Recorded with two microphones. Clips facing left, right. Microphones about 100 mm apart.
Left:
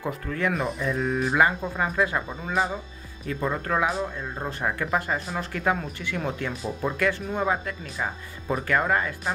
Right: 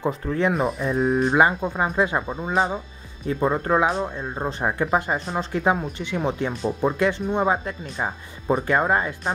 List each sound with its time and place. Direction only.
0.0 s speech: 25° right (ahead or behind)
1.3 s speech: 20° right (ahead or behind)